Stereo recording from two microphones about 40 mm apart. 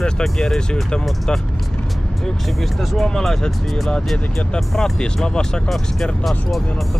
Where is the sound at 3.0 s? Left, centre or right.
Centre.